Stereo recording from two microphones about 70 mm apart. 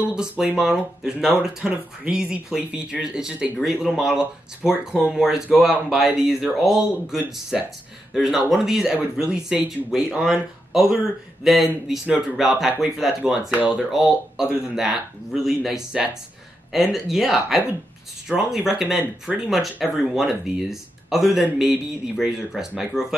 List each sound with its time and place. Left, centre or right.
0.0 s speech: centre
13.5 s speech: right
13.9 s speech: centre